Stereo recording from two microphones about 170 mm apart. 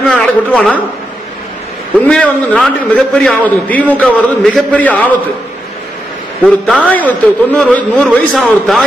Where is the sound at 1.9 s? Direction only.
5° left (ahead or behind).